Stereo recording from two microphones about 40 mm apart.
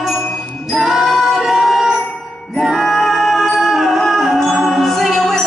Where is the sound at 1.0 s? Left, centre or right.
Centre.